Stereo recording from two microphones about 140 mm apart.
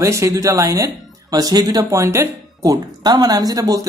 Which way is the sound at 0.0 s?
20° right (ahead or behind).